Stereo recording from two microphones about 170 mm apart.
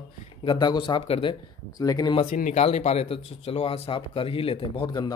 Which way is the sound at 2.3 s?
40° left (ahead or behind).